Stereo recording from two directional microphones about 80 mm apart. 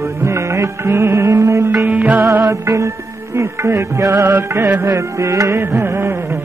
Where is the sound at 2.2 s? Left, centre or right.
Right.